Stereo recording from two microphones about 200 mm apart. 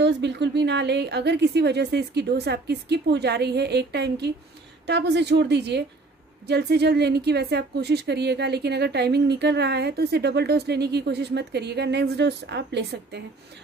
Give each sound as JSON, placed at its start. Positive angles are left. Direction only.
{"t": 0.0, "sound": "a woman's voice", "side_deg": -60}